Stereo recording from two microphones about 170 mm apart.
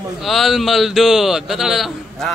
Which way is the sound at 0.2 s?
Centre (ahead or behind).